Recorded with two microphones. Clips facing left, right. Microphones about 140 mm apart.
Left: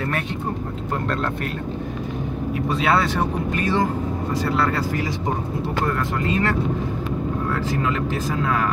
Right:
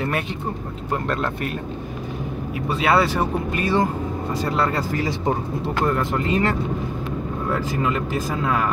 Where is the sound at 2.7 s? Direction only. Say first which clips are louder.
Right 2 dB; 5° right (ahead or behind).